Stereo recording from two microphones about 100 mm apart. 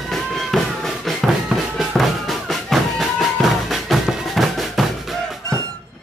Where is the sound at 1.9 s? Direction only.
5° left (ahead or behind).